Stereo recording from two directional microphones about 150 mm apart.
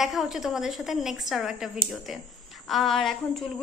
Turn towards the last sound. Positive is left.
turn(degrees=0)  # may be behind; listen again after turning